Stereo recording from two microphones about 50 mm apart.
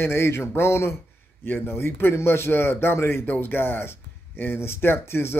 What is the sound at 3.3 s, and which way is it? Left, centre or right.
Speech, left.